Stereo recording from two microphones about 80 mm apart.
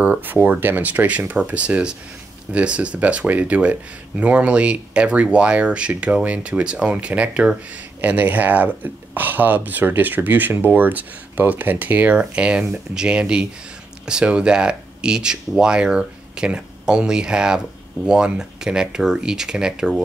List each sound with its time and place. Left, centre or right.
0.0 s speech: centre